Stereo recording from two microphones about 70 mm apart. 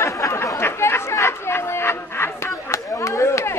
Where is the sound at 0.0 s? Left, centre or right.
Left.